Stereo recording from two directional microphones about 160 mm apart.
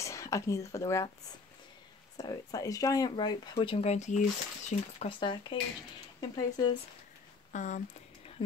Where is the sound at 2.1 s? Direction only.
25° left (ahead or behind); by 5.1 s 50° left (ahead or behind).